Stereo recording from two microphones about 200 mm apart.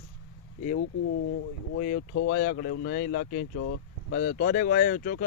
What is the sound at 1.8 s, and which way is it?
Speech, 45° left (ahead or behind).